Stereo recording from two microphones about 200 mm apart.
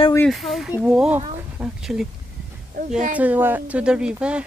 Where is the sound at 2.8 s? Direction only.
40° right (ahead or behind).